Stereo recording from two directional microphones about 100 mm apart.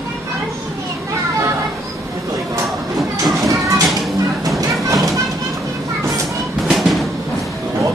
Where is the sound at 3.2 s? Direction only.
35° right (ahead or behind).